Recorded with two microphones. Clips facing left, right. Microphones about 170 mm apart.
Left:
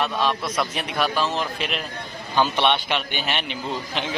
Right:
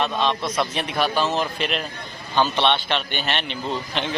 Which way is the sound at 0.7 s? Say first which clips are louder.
Right 1 dB; centre (ahead or behind).